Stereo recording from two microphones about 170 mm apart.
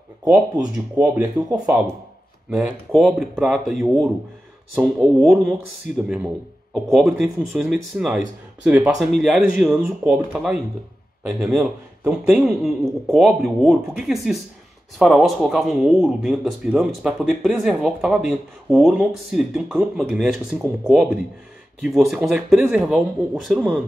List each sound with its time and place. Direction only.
0.2 s speech: 20° right (ahead or behind)
0.9 s speech: 5° right (ahead or behind)
6.7 s speech: centre (ahead or behind)